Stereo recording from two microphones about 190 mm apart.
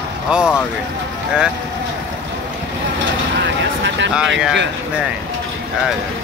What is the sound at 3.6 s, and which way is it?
Vehicle, 70° right (ahead or behind).